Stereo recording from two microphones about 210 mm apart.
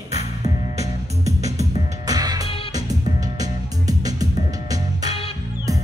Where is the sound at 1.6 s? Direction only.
15° right (ahead or behind).